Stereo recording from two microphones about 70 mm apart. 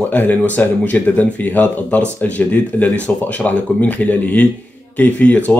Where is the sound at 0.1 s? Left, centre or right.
Left.